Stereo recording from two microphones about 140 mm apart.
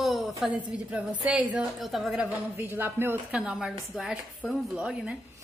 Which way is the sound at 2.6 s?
15° right (ahead or behind).